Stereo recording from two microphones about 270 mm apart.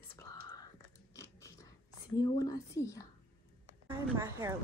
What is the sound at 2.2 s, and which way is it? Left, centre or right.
Speech, centre.